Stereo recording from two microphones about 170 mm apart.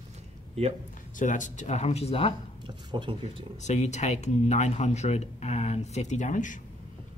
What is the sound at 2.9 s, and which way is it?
Speech, 30° right (ahead or behind).